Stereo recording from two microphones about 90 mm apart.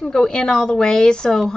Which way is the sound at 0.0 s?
5° left (ahead or behind).